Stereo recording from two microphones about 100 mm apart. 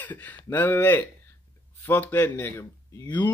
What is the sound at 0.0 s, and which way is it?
Speech, 15° left (ahead or behind).